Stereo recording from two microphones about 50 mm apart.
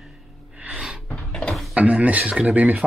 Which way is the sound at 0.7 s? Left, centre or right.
Centre.